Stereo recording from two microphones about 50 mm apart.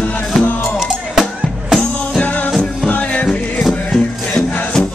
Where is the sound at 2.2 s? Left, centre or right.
Left.